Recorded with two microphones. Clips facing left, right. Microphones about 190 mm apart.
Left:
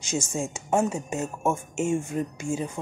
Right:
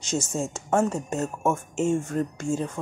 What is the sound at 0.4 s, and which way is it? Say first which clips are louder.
Speech: right 1 dB; 15° left (ahead or behind).